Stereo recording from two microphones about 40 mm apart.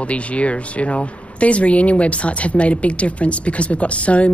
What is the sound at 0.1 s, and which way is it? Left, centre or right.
Speech, left.